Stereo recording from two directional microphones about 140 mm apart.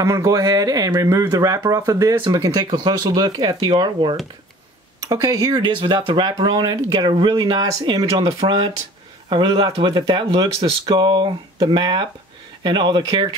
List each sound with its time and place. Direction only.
0.0 s speech: 25° right (ahead or behind)
8.2 s speech: 45° right (ahead or behind)
8.5 s speech: 35° right (ahead or behind)